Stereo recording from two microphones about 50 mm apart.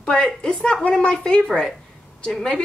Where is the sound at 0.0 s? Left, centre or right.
Centre.